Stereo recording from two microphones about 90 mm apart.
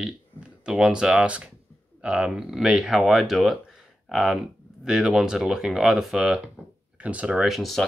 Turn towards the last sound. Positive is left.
turn(degrees=0)  # may be behind; listen again after turning